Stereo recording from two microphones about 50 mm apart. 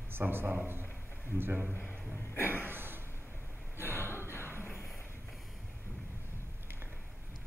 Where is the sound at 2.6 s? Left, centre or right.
Right.